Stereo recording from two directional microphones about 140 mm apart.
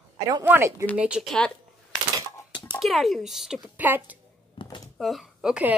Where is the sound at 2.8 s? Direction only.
Centre (ahead or behind).